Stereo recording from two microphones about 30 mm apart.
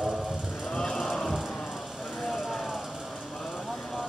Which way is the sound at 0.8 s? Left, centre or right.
Centre.